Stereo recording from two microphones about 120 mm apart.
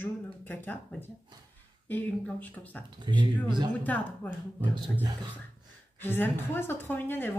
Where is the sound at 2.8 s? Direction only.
40° right (ahead or behind).